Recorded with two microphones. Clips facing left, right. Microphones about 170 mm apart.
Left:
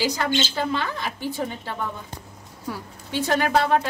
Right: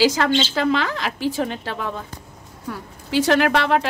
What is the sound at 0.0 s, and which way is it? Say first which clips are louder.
A woman's voice: right 6 dB; 90° right.